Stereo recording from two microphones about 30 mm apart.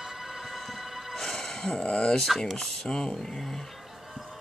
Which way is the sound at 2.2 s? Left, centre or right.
Centre.